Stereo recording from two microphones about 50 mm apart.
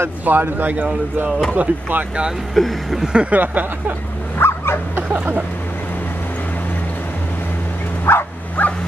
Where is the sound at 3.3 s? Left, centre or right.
Right.